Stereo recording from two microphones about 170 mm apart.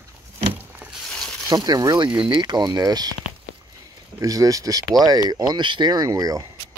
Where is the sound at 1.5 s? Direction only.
25° right (ahead or behind).